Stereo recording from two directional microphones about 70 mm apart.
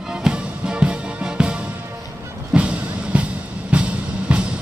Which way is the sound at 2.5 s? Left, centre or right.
Centre.